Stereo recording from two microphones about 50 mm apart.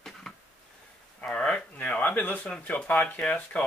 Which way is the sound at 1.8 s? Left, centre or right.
Left.